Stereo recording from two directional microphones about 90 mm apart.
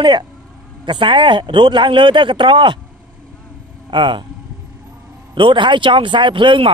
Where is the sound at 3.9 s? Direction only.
65° right (ahead or behind).